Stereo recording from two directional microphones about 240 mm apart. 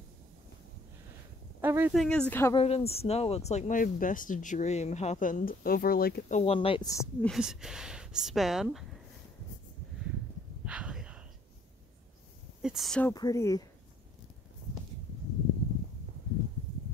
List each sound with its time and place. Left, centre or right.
1.6 s speech: centre
2.0 s speech: centre
2.5 s speech: left; by 8.8 s centre
10.6 s a sound: centre
12.6 s speech: centre
13.1 s speech: centre